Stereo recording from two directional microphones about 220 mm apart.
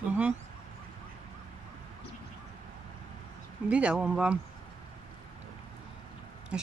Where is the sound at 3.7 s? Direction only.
5° right (ahead or behind).